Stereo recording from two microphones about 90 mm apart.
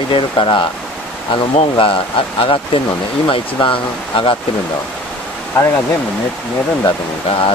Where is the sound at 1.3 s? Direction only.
80° left.